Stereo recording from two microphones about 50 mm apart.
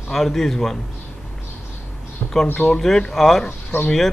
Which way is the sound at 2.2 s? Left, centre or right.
Left.